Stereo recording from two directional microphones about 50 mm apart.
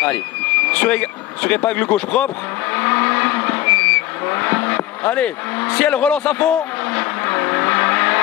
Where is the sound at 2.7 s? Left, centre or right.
Left.